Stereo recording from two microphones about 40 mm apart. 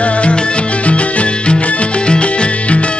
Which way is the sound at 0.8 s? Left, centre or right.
Left.